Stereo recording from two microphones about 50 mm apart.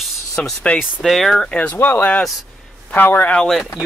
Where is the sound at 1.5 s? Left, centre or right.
Left.